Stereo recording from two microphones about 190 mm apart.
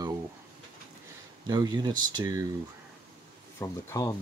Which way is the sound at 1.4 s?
20° right (ahead or behind).